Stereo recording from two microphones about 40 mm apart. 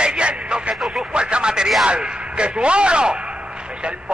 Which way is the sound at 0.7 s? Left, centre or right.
Centre.